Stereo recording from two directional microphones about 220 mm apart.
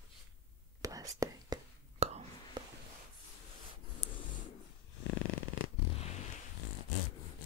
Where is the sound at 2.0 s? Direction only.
30° right (ahead or behind).